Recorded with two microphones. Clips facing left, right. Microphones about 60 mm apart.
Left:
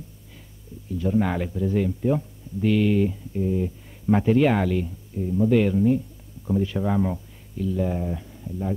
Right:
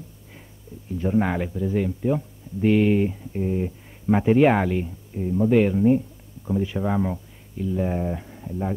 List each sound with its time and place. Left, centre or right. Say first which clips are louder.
0.9 s speech: right 1 dB; right
1.2 s speech: even; centre
2.6 s speech: right 2 dB; right